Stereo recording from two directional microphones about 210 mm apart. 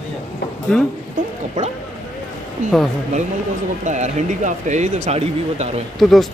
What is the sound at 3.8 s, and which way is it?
Speech, 35° right (ahead or behind).